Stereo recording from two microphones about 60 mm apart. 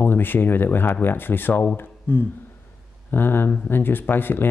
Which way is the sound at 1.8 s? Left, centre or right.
Left.